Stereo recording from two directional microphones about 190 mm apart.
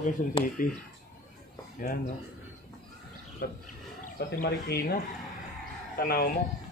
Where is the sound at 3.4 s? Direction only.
55° left (ahead or behind).